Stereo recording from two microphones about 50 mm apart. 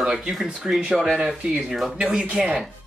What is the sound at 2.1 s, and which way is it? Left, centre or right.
Speech, centre.